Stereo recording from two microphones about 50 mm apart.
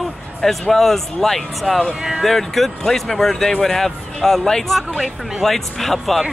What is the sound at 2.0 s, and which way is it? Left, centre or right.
Speech, centre.